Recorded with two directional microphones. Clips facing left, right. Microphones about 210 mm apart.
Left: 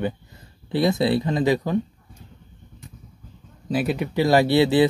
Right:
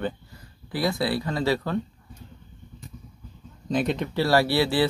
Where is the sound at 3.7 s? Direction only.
5° left (ahead or behind).